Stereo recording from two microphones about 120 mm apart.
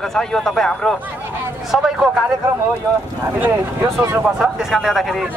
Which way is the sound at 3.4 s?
25° right (ahead or behind).